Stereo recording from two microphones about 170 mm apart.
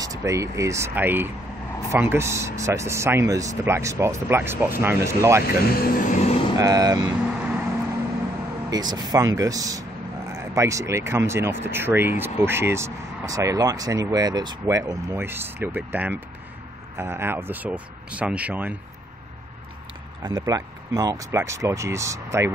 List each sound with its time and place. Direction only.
0.0 s speech: 20° right (ahead or behind)
5.8 s vehicle: 50° left (ahead or behind)
6.6 s speech: 20° right (ahead or behind)
7.3 s vehicle: 10° right (ahead or behind)
8.6 s speech: 25° right (ahead or behind)
20.2 s speech: 20° right (ahead or behind)